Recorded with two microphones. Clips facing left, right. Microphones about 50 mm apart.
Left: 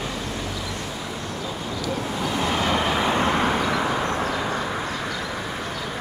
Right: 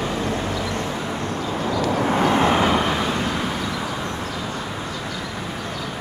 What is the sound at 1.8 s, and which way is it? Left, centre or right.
Vehicle, right.